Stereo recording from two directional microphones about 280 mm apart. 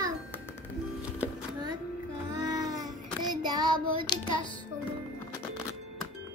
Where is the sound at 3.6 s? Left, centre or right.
Centre.